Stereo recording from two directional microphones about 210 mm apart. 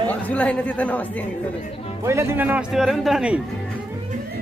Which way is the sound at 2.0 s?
10° right (ahead or behind).